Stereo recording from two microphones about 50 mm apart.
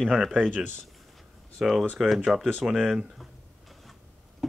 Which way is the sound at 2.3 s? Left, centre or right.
Centre.